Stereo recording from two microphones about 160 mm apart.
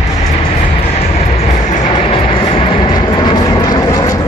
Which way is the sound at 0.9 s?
45° left (ahead or behind).